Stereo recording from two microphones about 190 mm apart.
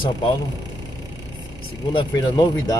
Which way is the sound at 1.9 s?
25° left (ahead or behind).